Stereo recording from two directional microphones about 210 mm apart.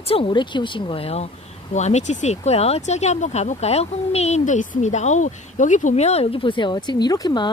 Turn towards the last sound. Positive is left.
turn(degrees=20)  # may be behind; listen again after turning